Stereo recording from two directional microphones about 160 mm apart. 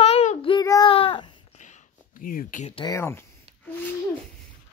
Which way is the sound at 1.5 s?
50° left (ahead or behind).